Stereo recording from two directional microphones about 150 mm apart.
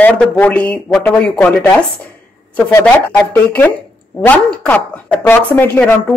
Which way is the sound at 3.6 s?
15° left (ahead or behind).